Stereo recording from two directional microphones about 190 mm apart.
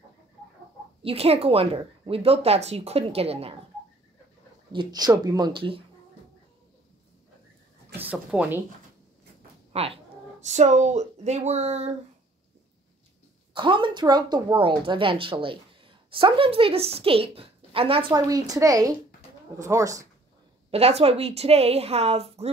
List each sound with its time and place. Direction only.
1.0 s speech: 30° right (ahead or behind)
4.7 s speech: 20° right (ahead or behind)
8.0 s speech: 5° right (ahead or behind)
9.7 s a sound: 30° right (ahead or behind)
10.4 s speech: 35° right (ahead or behind)
13.5 s speech: 25° right (ahead or behind)
20.7 s speech: 30° right (ahead or behind)